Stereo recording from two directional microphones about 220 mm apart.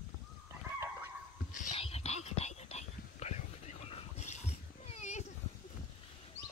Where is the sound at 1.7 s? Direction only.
25° left (ahead or behind).